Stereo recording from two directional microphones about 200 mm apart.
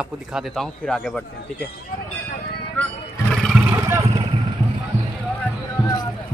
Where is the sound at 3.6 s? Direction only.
10° right (ahead or behind).